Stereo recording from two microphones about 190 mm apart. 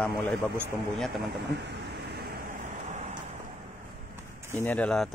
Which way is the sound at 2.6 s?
40° right (ahead or behind).